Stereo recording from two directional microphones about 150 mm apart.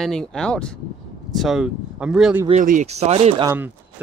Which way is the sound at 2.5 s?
55° right (ahead or behind).